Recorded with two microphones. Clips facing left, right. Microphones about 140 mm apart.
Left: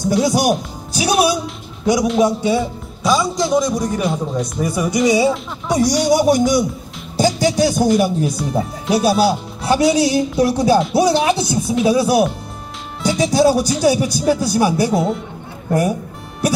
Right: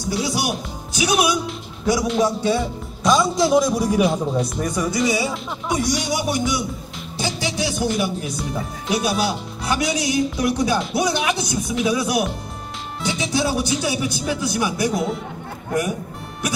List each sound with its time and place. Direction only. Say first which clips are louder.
0.0 s speech: left 8 dB; 45° left (ahead or behind)
2.2 s speech: left 4 dB; 15° left (ahead or behind)
3.0 s a man's voice: even; centre (ahead or behind); by 5.3 s 20° left (ahead or behind)
5.7 s speech: left 8 dB; 40° left (ahead or behind)
7.2 s music: left 10 dB; 45° left (ahead or behind)
8.0 s speech: left 7 dB; 35° left (ahead or behind)